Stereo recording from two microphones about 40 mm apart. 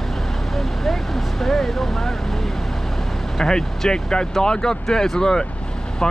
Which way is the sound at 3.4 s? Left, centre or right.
Centre.